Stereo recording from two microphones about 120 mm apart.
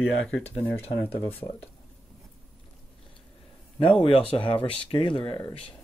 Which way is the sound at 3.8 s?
50° left (ahead or behind).